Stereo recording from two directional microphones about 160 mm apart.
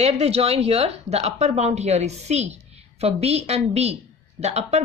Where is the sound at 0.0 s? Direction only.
40° right (ahead or behind).